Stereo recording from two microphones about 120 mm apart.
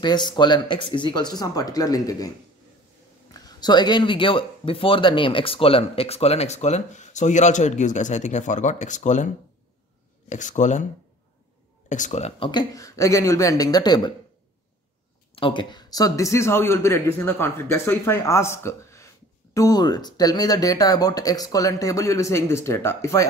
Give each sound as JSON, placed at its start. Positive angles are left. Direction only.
{"t": 0.0, "sound": "speech", "side_deg": 40}
{"t": 10.3, "sound": "speech", "side_deg": 90}
{"t": 11.9, "sound": "speech", "side_deg": 80}
{"t": 12.4, "sound": "a man's voice", "side_deg": 30}
{"t": 15.3, "sound": "a man's voice", "side_deg": 45}